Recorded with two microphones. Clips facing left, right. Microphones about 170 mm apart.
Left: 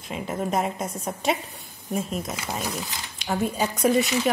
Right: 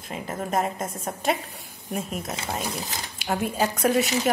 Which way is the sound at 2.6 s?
35° right (ahead or behind).